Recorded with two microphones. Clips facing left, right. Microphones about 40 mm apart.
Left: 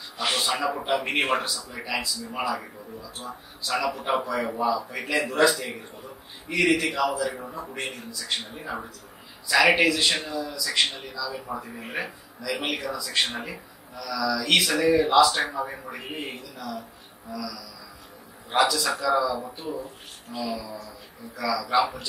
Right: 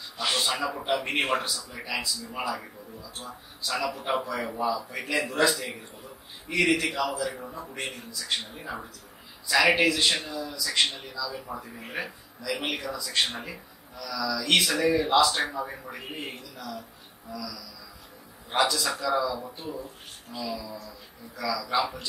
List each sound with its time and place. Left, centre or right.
0.2 s a man's voice: centre